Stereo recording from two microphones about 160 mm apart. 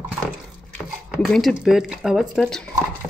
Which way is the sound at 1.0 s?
Centre (ahead or behind).